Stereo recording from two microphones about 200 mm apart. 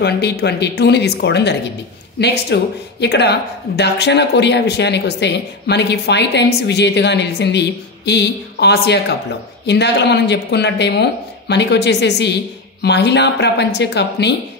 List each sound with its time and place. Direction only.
0.0 s speech: 55° left (ahead or behind)